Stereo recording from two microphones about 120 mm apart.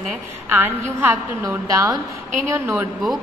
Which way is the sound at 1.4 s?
30° right (ahead or behind).